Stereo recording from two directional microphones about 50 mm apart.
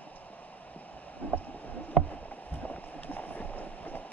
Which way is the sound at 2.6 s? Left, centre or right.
Left.